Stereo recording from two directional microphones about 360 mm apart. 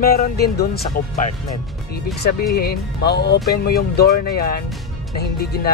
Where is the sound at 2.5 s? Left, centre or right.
Left.